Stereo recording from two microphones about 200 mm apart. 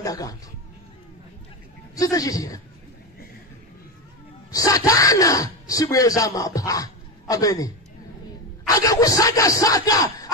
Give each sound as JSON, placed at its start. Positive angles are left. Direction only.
{"t": 0.0, "sound": "speech", "side_deg": 15}
{"t": 2.0, "sound": "speech", "side_deg": 15}
{"t": 4.5, "sound": "speech", "side_deg": 15}